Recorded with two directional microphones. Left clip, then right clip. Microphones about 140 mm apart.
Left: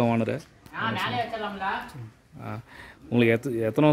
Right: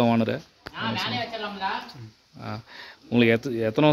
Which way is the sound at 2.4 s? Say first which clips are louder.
Right 2 dB; 10° left (ahead or behind).